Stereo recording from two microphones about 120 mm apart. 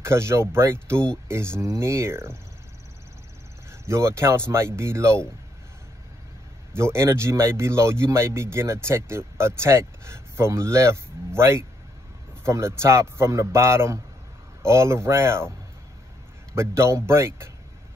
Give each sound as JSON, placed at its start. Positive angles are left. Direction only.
{"t": 0.0, "sound": "speech", "side_deg": -20}
{"t": 3.8, "sound": "speech", "side_deg": -20}
{"t": 6.7, "sound": "speech", "side_deg": -20}
{"t": 16.5, "sound": "speech", "side_deg": -25}